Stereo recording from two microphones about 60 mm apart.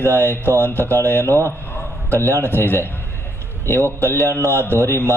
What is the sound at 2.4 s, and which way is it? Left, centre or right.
A man's voice, left.